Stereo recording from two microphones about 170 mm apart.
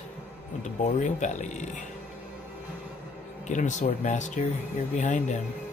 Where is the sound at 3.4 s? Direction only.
45° left (ahead or behind).